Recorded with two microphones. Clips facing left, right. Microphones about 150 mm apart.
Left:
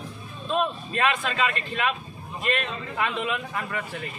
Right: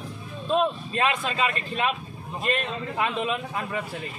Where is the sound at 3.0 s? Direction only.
30° right (ahead or behind).